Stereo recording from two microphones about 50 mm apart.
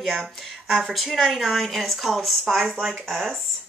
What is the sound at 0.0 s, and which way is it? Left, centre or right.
Speech, centre.